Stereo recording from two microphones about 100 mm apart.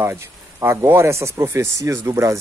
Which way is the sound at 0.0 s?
25° right (ahead or behind).